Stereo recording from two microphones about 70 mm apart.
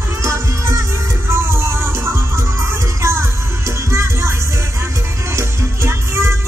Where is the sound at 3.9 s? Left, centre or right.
Right.